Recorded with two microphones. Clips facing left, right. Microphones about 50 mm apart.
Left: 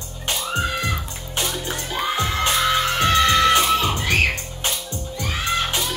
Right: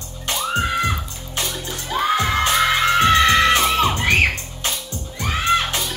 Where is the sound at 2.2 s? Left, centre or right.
Right.